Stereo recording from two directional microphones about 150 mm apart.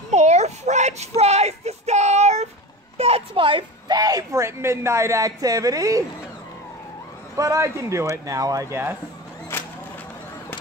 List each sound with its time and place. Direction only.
0.1 s a sound: 50° right (ahead or behind)
3.0 s a woman's voice: 40° right (ahead or behind); by 6.0 s 25° right (ahead or behind)
7.3 s a woman's voice: 20° right (ahead or behind)